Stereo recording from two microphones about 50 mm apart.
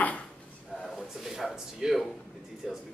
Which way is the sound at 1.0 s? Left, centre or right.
Centre.